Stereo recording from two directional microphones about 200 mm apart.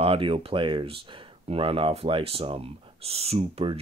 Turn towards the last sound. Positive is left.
turn(degrees=-30)  # may be behind; listen again after turning